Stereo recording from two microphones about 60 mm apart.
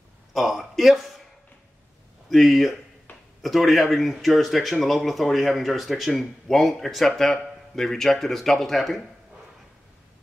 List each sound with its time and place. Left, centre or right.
0.3 s speech: centre
2.2 s speech: centre
3.1 s a sound: left
3.4 s speech: centre